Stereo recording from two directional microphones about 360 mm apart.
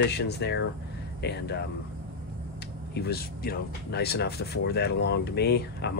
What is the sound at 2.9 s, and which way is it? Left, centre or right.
Speech, left.